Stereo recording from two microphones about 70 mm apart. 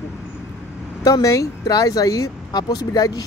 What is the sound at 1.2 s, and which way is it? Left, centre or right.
Speech, left.